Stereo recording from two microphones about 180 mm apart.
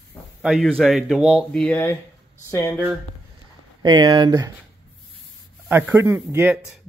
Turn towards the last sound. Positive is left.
turn(degrees=-10)  # may be behind; listen again after turning